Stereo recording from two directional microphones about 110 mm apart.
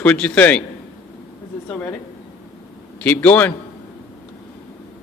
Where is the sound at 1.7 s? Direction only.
15° left (ahead or behind).